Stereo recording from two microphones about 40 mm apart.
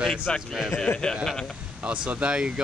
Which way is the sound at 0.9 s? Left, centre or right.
Left.